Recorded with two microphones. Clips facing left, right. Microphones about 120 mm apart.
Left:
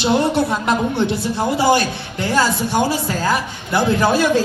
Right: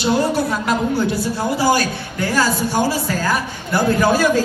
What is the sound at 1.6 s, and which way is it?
Speech, 20° left (ahead or behind).